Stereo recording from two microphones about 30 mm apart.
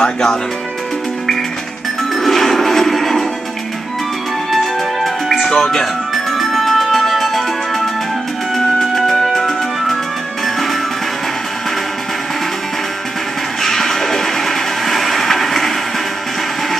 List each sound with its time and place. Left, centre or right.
0.0 s speech: left
2.1 s music: centre
4.5 s music: centre
5.6 s speech: centre
6.1 s music: centre
9.0 s music: centre
13.6 s a sound: centre